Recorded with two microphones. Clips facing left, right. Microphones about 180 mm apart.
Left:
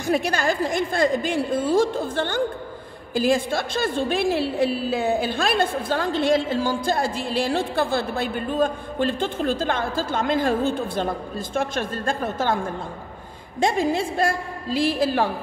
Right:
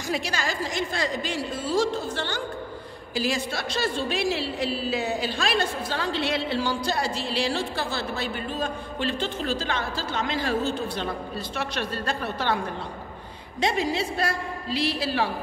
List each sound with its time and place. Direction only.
0.0 s a woman's voice: 55° left (ahead or behind)